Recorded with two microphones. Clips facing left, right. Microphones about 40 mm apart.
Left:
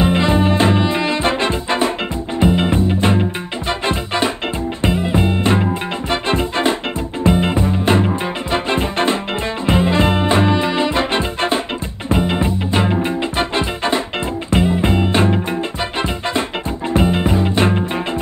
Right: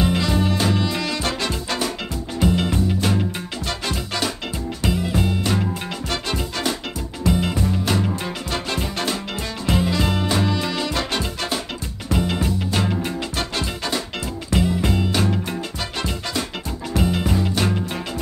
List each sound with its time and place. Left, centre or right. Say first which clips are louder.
0.0 s music: left 6 dB; left